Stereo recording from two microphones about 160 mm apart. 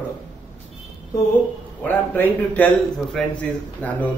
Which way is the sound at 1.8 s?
10° left (ahead or behind).